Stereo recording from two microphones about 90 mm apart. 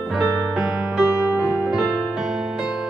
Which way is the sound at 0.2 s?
10° right (ahead or behind).